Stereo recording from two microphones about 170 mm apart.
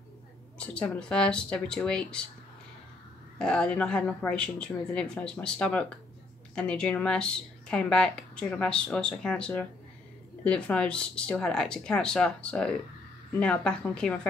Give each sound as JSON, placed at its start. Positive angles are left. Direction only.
{"t": 0.6, "sound": "a woman's voice", "side_deg": 5}
{"t": 3.3, "sound": "a woman's voice", "side_deg": 5}